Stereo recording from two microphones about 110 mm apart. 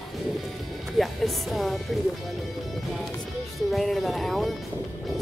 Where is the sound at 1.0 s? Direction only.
Centre (ahead or behind).